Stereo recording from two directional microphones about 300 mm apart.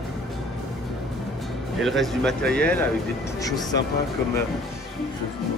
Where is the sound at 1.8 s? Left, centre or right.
Centre.